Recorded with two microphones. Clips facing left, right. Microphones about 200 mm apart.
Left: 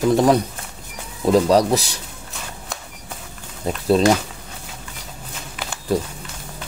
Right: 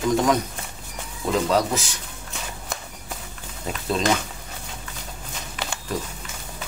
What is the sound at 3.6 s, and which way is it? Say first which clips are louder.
Speech: left 8 dB; 40° left (ahead or behind).